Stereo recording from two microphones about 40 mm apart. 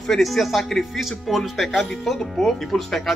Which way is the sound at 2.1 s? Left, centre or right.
Centre.